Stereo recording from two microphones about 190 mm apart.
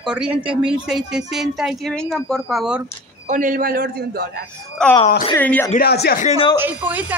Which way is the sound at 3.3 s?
45° right (ahead or behind).